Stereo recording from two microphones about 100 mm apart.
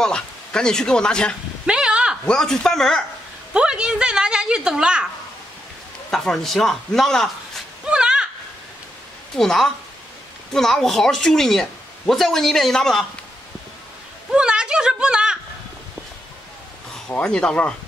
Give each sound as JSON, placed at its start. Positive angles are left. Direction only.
{"t": 0.0, "sound": "speech", "side_deg": 10}
{"t": 1.7, "sound": "a sound", "side_deg": -10}
{"t": 2.2, "sound": "speech", "side_deg": 5}
{"t": 3.5, "sound": "a woman's voice", "side_deg": -10}
{"t": 6.1, "sound": "speech", "side_deg": 0}
{"t": 7.8, "sound": "a sound", "side_deg": -10}
{"t": 9.4, "sound": "speech", "side_deg": 5}
{"t": 14.3, "sound": "speech", "side_deg": -10}
{"t": 17.1, "sound": "speech", "side_deg": 10}